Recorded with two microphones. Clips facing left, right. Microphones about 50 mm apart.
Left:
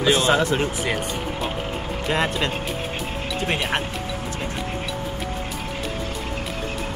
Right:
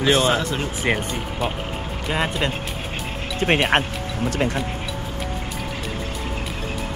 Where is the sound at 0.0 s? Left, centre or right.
Centre.